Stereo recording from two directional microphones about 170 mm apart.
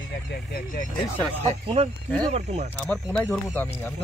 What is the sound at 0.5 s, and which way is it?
Speech, 50° left (ahead or behind).